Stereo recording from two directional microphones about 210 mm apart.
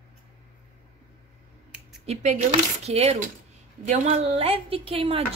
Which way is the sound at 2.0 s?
30° right (ahead or behind).